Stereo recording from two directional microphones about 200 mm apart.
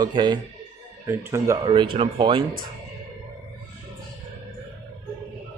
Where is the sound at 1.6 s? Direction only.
25° right (ahead or behind).